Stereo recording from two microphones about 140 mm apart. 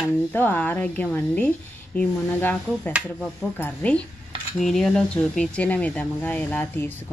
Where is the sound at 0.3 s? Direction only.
15° left (ahead or behind).